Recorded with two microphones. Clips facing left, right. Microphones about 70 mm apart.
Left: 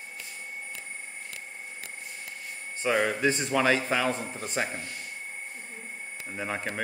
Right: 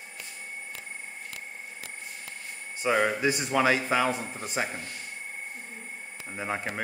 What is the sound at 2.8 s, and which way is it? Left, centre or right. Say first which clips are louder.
Speech: even; centre.